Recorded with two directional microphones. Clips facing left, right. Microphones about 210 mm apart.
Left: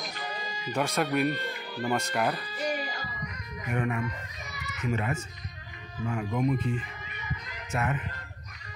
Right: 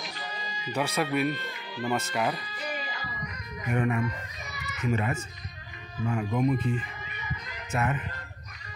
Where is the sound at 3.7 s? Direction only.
30° right (ahead or behind).